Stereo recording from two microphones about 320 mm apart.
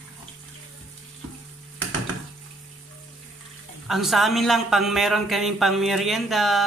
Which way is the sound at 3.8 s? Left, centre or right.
Centre.